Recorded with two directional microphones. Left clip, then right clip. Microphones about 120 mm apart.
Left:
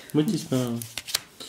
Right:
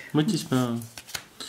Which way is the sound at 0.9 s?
15° left (ahead or behind).